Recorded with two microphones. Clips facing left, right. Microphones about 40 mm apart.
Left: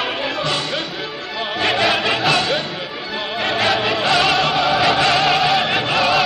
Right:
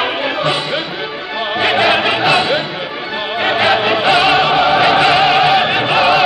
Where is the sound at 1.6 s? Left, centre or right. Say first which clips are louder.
Right 4 dB; centre.